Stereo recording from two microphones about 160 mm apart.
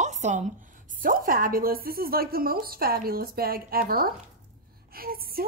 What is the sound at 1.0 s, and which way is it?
A woman's voice, 60° right (ahead or behind).